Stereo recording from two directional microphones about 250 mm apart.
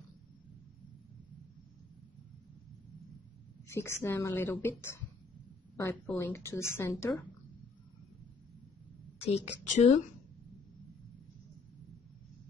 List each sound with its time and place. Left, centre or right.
3.6 s a woman's voice: centre
9.2 s a woman's voice: left